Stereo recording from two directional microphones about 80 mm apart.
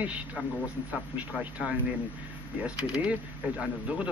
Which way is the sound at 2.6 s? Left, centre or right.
Centre.